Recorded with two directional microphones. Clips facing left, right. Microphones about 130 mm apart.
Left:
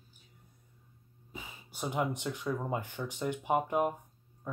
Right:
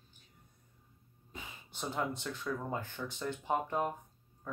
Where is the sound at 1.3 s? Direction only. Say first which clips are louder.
Left 2 dB; 10° left (ahead or behind).